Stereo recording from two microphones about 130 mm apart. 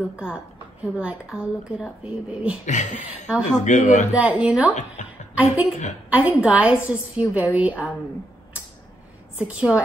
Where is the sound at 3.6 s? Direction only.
65° left (ahead or behind).